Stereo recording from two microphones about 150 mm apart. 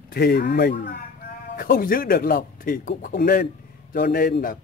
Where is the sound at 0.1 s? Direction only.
90° left.